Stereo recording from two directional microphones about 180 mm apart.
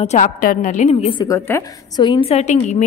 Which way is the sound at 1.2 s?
15° left (ahead or behind).